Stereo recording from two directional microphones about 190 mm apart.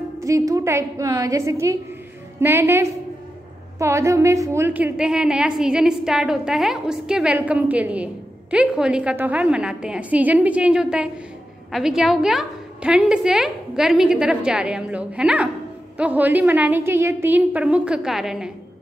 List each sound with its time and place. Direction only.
0.2 s a woman's voice: 15° right (ahead or behind); by 18.5 s centre (ahead or behind)